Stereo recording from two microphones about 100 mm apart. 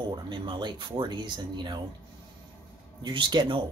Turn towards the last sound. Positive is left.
turn(degrees=-55)  # may be behind; listen again after turning